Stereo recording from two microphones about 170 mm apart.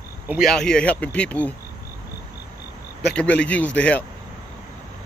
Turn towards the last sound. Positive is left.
turn(degrees=5)  # may be behind; listen again after turning